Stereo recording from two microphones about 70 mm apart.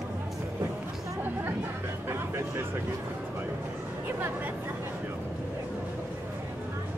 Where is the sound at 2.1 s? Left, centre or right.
Right.